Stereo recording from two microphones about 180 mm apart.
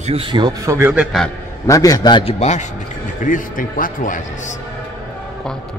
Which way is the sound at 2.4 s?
40° left (ahead or behind).